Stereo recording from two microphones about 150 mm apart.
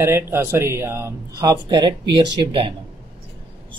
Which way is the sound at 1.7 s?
30° right (ahead or behind).